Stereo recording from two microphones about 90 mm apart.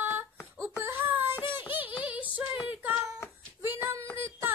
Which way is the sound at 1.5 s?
25° right (ahead or behind).